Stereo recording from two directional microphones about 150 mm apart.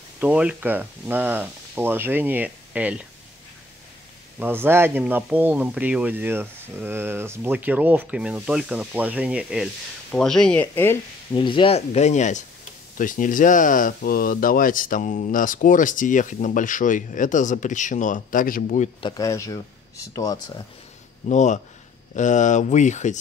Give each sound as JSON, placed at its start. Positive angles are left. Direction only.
{"t": 0.2, "sound": "speech", "side_deg": -10}
{"t": 4.4, "sound": "speech", "side_deg": -15}
{"t": 11.3, "sound": "speech", "side_deg": 35}
{"t": 18.9, "sound": "speech", "side_deg": 30}
{"t": 21.3, "sound": "speech", "side_deg": 55}